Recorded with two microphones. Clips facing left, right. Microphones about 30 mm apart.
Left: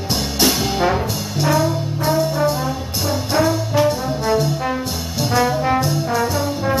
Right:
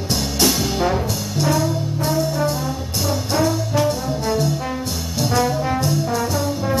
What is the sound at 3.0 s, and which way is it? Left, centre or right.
Brass instrument, centre.